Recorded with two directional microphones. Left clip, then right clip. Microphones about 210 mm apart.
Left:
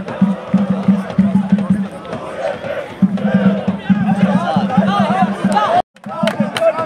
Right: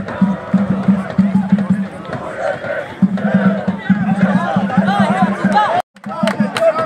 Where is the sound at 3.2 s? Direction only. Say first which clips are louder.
Even; 35° left (ahead or behind).